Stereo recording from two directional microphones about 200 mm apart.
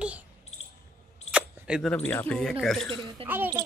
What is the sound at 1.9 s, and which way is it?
Speech, 10° left (ahead or behind).